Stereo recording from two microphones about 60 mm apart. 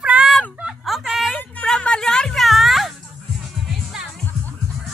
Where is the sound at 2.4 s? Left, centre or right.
Centre.